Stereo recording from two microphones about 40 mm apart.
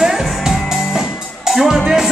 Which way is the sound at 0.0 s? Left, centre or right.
Centre.